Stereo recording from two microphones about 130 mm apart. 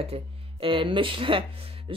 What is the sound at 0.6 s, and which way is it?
Speech, 40° right (ahead or behind).